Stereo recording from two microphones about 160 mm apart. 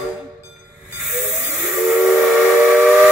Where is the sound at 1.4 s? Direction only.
5° right (ahead or behind).